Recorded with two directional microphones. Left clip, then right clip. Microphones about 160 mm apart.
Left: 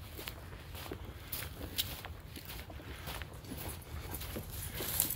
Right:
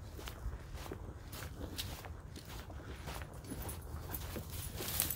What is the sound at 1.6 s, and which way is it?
Walk, 10° left (ahead or behind).